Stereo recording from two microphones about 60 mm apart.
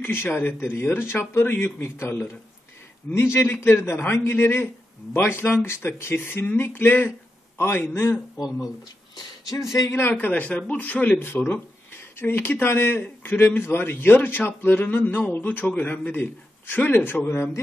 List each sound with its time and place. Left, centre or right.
0.0 s a man's voice: left
8.4 s speech: centre
9.7 s speech: left
10.1 s a man's voice: left